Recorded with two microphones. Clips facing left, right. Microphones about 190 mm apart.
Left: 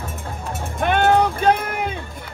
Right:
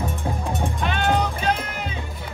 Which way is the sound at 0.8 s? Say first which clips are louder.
Left 8 dB; 55° left (ahead or behind).